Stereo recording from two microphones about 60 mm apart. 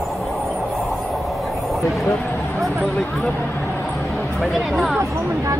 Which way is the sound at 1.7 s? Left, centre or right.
Centre.